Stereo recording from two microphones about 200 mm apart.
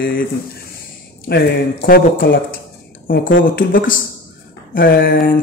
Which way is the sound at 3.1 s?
45° left (ahead or behind).